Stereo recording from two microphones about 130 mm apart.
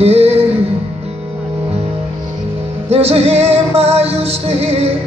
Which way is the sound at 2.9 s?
50° right (ahead or behind).